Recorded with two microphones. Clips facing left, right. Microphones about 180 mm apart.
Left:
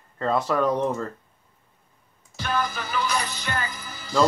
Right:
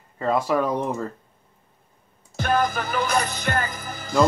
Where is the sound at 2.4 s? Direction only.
50° right (ahead or behind).